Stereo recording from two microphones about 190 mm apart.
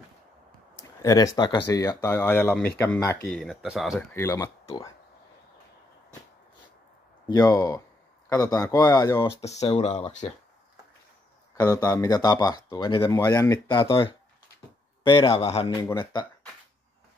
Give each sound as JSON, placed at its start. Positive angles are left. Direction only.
{"t": 0.7, "sound": "speech", "side_deg": 15}
{"t": 3.3, "sound": "speech", "side_deg": 0}
{"t": 4.1, "sound": "speech", "side_deg": 15}
{"t": 7.2, "sound": "speech", "side_deg": 20}
{"t": 9.4, "sound": "speech", "side_deg": 35}
{"t": 11.5, "sound": "speech", "side_deg": 15}